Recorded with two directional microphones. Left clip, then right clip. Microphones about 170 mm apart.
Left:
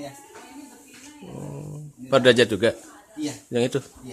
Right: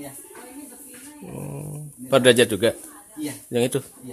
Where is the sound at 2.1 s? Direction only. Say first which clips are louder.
Right 1 dB; 10° right (ahead or behind).